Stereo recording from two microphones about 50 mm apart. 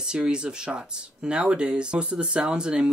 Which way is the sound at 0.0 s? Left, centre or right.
Centre.